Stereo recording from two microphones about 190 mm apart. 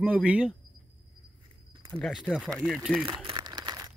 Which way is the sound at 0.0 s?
5° right (ahead or behind).